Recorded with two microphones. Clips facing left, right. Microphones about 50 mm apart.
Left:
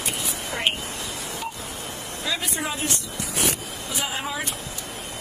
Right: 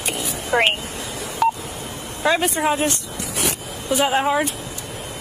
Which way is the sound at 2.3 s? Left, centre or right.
Right.